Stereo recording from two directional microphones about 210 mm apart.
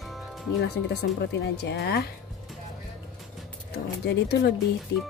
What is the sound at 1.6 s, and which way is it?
Speech, 50° left (ahead or behind).